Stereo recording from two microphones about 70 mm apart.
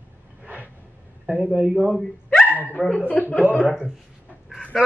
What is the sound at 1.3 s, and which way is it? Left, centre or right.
Male singing, centre.